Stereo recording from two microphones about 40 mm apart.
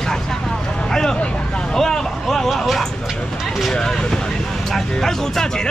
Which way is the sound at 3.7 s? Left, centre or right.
Centre.